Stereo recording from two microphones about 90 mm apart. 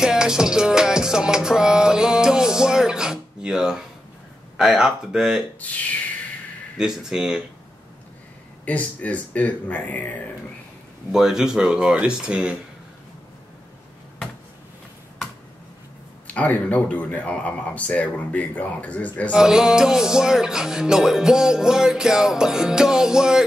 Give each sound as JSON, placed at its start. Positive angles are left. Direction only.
{"t": 0.0, "sound": "music", "side_deg": -5}
{"t": 5.6, "sound": "speech", "side_deg": 15}
{"t": 6.8, "sound": "music", "side_deg": -5}
{"t": 8.6, "sound": "speech", "side_deg": 15}
{"t": 11.1, "sound": "music", "side_deg": -5}
{"t": 16.3, "sound": "speech", "side_deg": 15}
{"t": 19.3, "sound": "music", "side_deg": -5}